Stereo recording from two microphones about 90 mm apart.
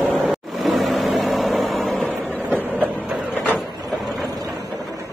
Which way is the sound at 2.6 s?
15° right (ahead or behind).